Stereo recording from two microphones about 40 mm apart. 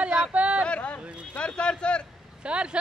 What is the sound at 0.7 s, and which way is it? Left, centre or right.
Speech, left.